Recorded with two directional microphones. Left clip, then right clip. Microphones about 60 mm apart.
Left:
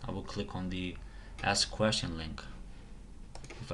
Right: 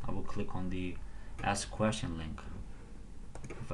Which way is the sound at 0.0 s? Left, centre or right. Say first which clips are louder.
Left 1 dB; centre.